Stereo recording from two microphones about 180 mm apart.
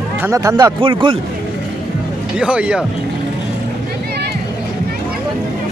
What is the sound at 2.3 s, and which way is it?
Speech, 5° right (ahead or behind).